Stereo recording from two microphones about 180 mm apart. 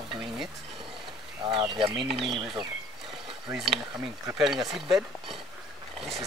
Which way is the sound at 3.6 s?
Centre (ahead or behind).